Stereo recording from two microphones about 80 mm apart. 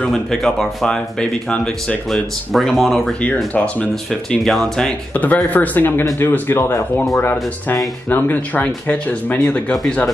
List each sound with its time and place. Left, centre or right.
0.0 s speech: centre
2.0 s speech: centre
3.5 s speech: centre
3.9 s speech: centre
5.1 s speech: centre
8.9 s speech: centre